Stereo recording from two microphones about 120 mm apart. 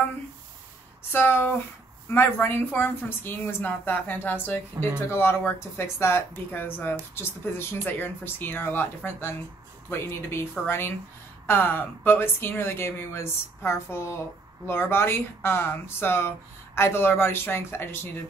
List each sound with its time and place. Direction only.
1.1 s a woman's voice: 20° left (ahead or behind)